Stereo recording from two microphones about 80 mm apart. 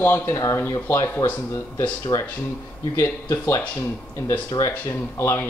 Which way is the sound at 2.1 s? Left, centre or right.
Left.